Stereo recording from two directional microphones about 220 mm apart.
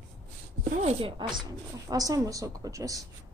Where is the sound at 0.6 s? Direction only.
35° right (ahead or behind).